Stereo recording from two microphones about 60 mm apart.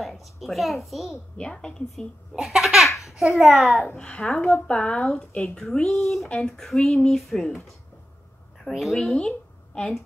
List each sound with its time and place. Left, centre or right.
0.2 s a child's voice: centre
1.4 s a child's voice: centre
3.9 s speech: centre
4.3 s speech: centre
4.6 s speech: centre
8.6 s speech: centre